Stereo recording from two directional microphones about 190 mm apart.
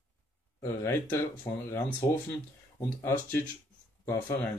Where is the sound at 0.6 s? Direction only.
10° left (ahead or behind).